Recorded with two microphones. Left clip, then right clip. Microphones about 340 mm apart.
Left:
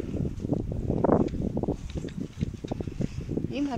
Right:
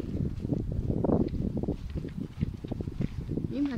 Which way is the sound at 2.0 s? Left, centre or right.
Left.